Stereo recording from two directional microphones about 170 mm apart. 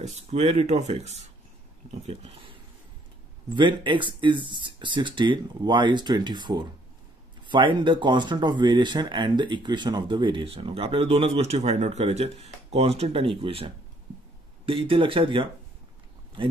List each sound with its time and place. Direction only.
0.0 s speech: 40° right (ahead or behind)
3.5 s speech: 30° right (ahead or behind)
14.7 s speech: 30° right (ahead or behind)